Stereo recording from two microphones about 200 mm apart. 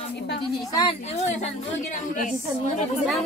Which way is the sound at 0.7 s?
25° left (ahead or behind).